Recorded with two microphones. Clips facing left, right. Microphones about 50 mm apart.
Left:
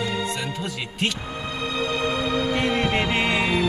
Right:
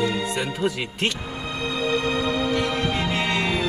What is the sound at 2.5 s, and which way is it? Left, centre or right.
Music, left.